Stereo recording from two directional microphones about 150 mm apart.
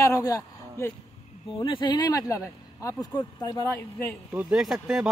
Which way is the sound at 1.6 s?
30° left (ahead or behind).